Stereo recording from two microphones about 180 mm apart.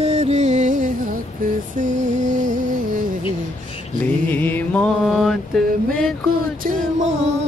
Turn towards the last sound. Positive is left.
turn(degrees=-40)  # may be behind; listen again after turning